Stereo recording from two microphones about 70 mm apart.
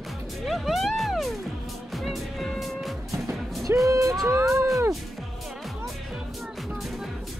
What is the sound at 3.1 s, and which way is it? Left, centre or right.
Music, right.